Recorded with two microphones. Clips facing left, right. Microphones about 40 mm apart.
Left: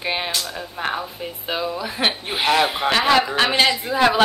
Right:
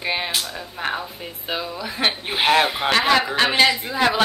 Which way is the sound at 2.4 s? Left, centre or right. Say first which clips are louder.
Right 1 dB; centre.